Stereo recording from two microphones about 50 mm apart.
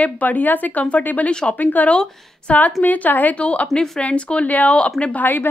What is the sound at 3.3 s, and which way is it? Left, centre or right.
Speech, left.